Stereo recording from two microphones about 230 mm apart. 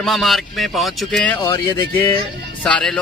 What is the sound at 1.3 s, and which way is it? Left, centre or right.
Speech, centre.